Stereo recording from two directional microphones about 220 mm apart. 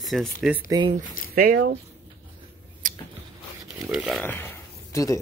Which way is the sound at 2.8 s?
35° right (ahead or behind).